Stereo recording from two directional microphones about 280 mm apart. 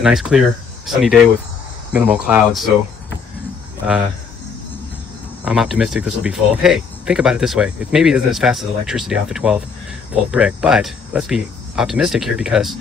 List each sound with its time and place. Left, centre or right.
0.0 s speech: centre
5.4 s speech: centre